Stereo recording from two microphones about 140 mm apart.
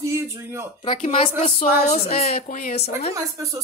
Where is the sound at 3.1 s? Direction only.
25° right (ahead or behind).